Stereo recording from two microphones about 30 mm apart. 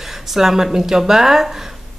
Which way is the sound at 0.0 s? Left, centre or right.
Centre.